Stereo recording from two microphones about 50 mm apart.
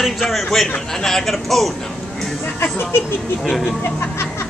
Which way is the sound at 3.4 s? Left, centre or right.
Centre.